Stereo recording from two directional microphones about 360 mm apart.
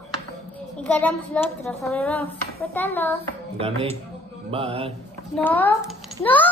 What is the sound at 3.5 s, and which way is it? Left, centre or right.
Speech, centre.